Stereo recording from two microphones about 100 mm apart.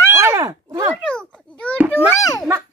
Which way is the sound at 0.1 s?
30° right (ahead or behind).